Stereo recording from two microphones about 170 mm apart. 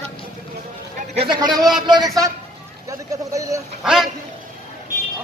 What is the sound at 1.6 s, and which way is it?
Speech, centre (ahead or behind).